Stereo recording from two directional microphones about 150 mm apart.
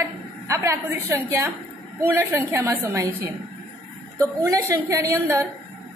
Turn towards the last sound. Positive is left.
turn(degrees=-20)  # may be behind; listen again after turning